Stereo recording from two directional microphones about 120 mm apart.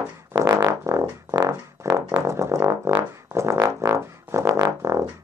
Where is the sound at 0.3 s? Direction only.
25° right (ahead or behind).